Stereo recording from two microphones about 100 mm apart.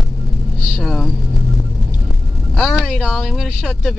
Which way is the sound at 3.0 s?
5° right (ahead or behind).